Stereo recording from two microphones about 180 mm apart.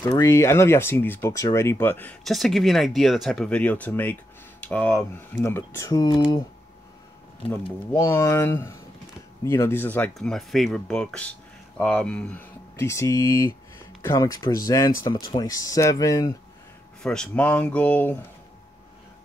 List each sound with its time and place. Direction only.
0.0 s speech: 15° left (ahead or behind)
7.4 s speech: 30° left (ahead or behind)
7.9 s speech: 15° left (ahead or behind)
17.0 s speech: 5° left (ahead or behind)